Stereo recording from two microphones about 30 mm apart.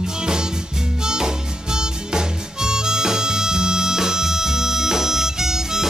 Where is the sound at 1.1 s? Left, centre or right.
Right.